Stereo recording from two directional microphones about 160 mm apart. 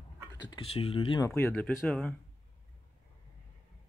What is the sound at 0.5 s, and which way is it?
Speech, 35° left (ahead or behind).